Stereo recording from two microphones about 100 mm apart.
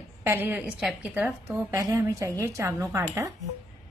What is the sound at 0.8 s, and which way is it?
Speech, 5° right (ahead or behind).